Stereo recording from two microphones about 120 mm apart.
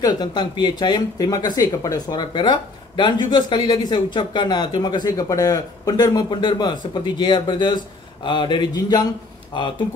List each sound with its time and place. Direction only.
0.0 s speech: 40° left (ahead or behind)